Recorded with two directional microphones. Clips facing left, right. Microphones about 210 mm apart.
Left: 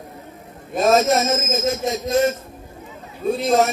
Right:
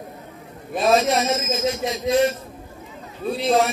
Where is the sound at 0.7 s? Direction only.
45° left (ahead or behind).